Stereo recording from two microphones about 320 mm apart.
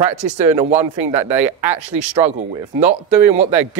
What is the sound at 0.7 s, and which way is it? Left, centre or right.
Speech, centre.